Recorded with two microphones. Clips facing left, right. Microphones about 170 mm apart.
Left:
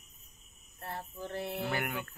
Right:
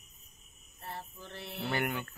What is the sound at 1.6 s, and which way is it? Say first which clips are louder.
Speech: right 6 dB; 5° left (ahead or behind).